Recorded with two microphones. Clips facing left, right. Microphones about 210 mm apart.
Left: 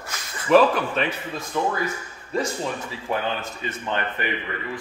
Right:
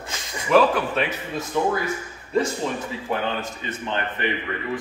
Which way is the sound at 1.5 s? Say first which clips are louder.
Right 2 dB; 15° right (ahead or behind).